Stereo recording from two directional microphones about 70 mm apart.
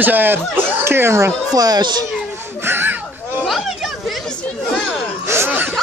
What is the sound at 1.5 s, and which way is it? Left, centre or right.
Speech, right.